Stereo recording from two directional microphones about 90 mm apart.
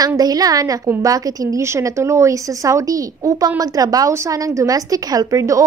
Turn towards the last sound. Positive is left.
turn(degrees=-35)  # may be behind; listen again after turning